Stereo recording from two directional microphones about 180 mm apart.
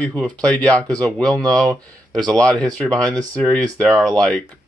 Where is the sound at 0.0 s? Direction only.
5° left (ahead or behind).